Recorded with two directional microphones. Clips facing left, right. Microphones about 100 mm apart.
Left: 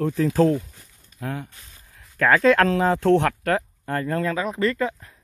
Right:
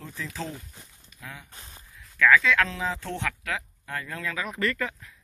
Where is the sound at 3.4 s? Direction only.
45° left (ahead or behind); by 4.9 s 25° left (ahead or behind).